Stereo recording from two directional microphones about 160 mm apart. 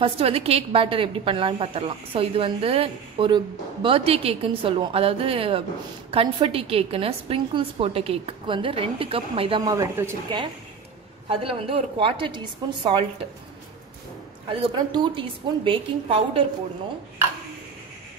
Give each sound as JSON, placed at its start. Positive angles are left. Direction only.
{"t": 0.0, "sound": "a woman's voice", "side_deg": -35}
{"t": 9.7, "sound": "speech", "side_deg": -20}
{"t": 11.2, "sound": "a woman's voice", "side_deg": -35}
{"t": 14.5, "sound": "a woman's voice", "side_deg": -35}